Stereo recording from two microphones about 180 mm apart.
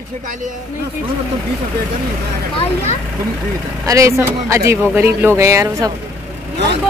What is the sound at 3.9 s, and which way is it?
Speech, 15° right (ahead or behind).